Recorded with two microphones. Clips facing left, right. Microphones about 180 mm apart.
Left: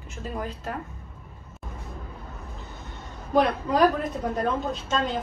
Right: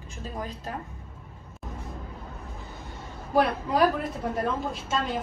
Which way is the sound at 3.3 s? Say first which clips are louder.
Left 2 dB; 5° right (ahead or behind).